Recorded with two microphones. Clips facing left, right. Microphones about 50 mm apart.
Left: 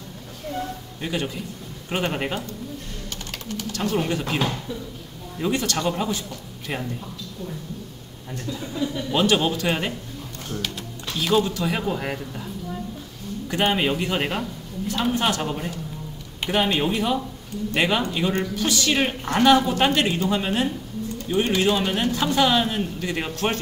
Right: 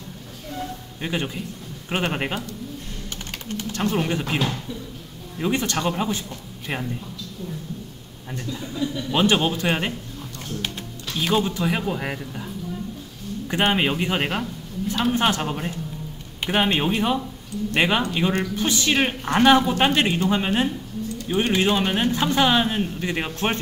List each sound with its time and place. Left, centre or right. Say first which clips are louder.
1.0 s a woman's voice: even; centre
3.4 s speech: right 2 dB; right
4.0 s a woman's voice: even; centre
5.4 s speech: even; right
9.1 s a woman's voice: right 1 dB; right
11.1 s a woman's voice: left 1 dB; centre
13.5 s a woman's voice: right 1 dB; right